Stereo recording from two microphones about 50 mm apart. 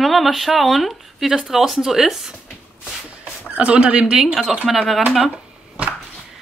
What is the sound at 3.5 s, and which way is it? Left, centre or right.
Speech, right.